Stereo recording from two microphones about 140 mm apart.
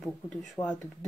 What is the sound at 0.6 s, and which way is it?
Speech, 25° left (ahead or behind).